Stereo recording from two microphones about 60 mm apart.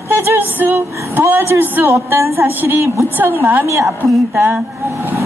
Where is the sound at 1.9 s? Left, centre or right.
Right.